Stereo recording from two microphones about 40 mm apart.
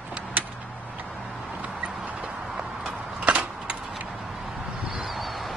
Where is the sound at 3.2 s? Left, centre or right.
Right.